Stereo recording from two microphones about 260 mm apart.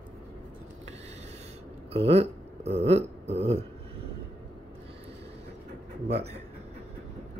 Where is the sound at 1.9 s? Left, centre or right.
Right.